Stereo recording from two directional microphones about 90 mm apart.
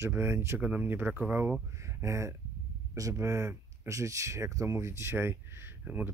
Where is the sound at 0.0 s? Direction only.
30° right (ahead or behind).